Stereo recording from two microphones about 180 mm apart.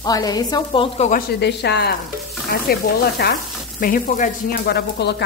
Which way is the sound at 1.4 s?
70° left (ahead or behind).